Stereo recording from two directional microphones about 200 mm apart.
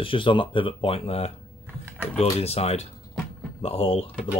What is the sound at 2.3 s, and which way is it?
Speech, 30° left (ahead or behind).